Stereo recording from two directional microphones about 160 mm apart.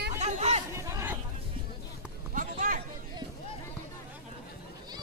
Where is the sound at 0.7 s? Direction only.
20° right (ahead or behind).